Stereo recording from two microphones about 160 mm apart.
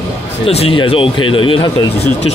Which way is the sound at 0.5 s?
35° left (ahead or behind).